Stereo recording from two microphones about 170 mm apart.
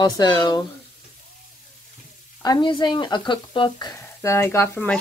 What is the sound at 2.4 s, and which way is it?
Speech, 25° left (ahead or behind).